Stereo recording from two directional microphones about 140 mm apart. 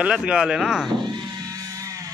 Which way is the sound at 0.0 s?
5° right (ahead or behind).